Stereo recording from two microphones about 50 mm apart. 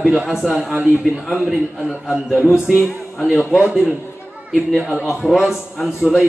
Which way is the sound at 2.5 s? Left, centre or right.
Centre.